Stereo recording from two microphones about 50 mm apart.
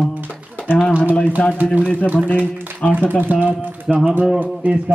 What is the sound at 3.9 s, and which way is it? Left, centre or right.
Speech, centre.